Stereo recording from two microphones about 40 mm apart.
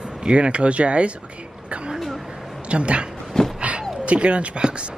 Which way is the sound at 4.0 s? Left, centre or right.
Right.